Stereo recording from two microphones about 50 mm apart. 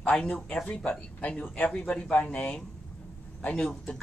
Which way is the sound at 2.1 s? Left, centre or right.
Left.